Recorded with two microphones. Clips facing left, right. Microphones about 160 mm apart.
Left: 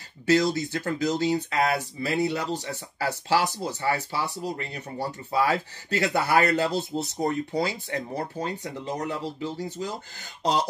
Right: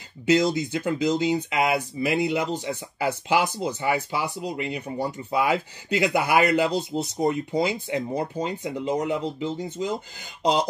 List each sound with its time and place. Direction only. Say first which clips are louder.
0.3 s speech: right 1 dB; 20° right (ahead or behind)